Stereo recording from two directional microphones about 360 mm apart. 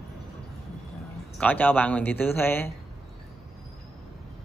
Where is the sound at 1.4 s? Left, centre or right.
Centre.